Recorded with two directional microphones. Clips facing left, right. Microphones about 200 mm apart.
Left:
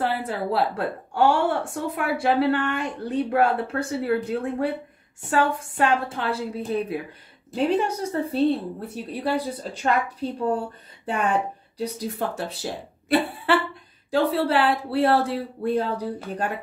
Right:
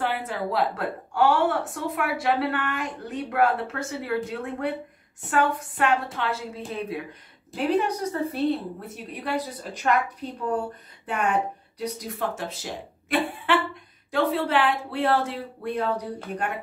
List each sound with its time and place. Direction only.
0.0 s speech: 35° left (ahead or behind)
7.5 s a woman's voice: 30° left (ahead or behind)